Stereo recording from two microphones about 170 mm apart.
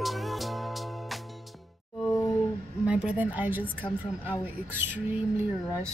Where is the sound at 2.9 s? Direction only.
10° right (ahead or behind).